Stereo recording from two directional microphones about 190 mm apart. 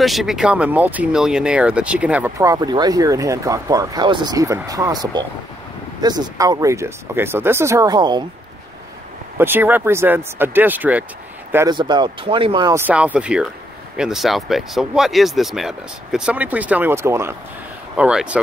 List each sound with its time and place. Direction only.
0.0 s speech: centre (ahead or behind); by 8.2 s 20° right (ahead or behind)
9.4 s speech: 10° right (ahead or behind)
11.5 s speech: 20° right (ahead or behind)
12.8 s speech: 5° right (ahead or behind)